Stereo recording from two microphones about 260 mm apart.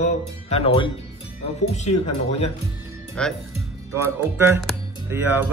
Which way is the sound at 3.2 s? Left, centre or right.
Centre.